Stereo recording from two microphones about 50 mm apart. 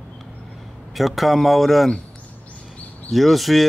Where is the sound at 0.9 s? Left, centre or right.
Centre.